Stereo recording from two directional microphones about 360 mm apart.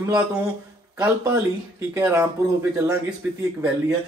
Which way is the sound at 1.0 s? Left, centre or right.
Centre.